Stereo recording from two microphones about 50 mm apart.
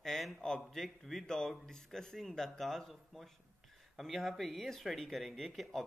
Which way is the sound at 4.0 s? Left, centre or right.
Centre.